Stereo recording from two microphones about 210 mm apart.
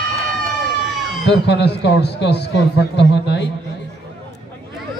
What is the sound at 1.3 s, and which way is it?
A man's voice, 55° left (ahead or behind).